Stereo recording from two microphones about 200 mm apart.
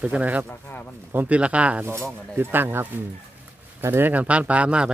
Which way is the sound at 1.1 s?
10° right (ahead or behind).